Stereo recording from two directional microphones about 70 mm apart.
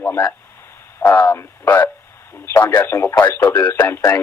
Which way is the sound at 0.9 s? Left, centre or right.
Left.